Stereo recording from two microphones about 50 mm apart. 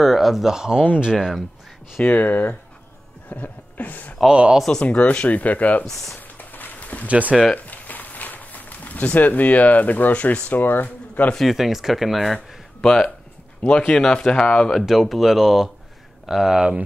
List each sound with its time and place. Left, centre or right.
0.0 s speech: centre
1.1 s speech: centre
2.0 s speech: left
3.3 s a sound: left
4.3 s speech: centre
4.8 s speech: left
6.1 s a sound: left
7.1 s speech: right
7.5 s a sound: left
10.6 s speech: left
11.4 s speech: centre
12.8 s speech: centre
13.6 s speech: left
14.7 s speech: centre